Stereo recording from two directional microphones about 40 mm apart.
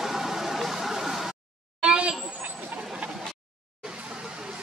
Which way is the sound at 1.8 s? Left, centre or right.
Right.